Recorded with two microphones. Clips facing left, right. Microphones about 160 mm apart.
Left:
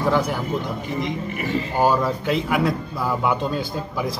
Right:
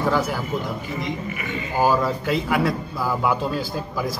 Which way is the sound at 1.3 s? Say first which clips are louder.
Left 5 dB; 35° left (ahead or behind).